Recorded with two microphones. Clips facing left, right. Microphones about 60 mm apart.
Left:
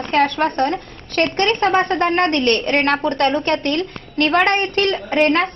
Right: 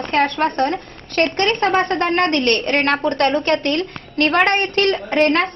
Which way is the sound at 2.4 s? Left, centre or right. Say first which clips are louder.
Left 1 dB; right.